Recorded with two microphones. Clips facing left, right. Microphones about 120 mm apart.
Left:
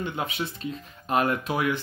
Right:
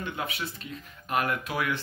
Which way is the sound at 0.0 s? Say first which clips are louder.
Left 4 dB; 25° left (ahead or behind).